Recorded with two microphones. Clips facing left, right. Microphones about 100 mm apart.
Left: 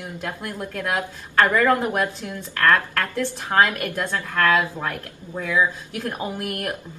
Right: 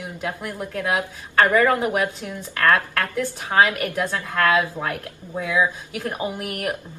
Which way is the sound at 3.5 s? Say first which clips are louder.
Right 1 dB; 15° right (ahead or behind).